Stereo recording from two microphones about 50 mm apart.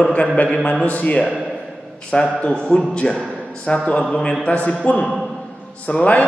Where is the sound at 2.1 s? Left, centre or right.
Centre.